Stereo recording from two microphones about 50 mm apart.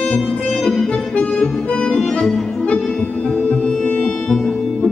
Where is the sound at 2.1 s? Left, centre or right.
Centre; by 3.7 s left.